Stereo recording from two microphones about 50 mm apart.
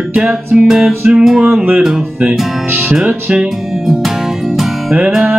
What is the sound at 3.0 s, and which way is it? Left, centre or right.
Speech, right.